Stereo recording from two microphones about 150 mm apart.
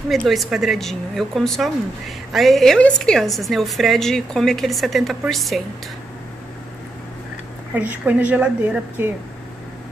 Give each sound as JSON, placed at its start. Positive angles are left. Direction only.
{"t": 0.1, "sound": "speech", "side_deg": 0}
{"t": 7.7, "sound": "a woman's voice", "side_deg": -10}